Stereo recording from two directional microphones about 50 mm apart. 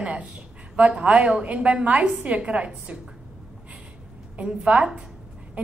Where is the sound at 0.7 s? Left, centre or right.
Right.